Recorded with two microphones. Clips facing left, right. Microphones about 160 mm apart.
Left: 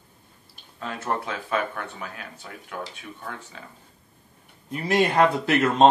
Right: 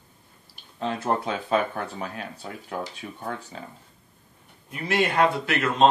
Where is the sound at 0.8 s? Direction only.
25° right (ahead or behind).